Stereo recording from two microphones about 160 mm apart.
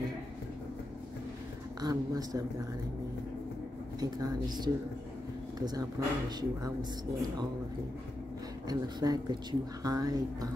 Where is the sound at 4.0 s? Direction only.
25° right (ahead or behind).